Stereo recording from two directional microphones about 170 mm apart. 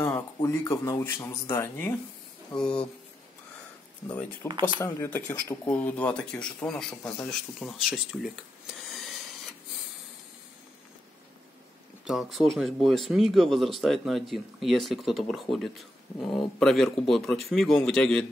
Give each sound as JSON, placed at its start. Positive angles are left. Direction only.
{"t": 0.0, "sound": "speech", "side_deg": 15}
{"t": 4.5, "sound": "speech", "side_deg": -30}
{"t": 4.7, "sound": "speech", "side_deg": 15}
{"t": 12.0, "sound": "speech", "side_deg": 0}